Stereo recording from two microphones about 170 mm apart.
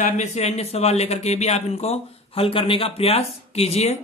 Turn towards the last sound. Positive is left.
turn(degrees=40)  # may be behind; listen again after turning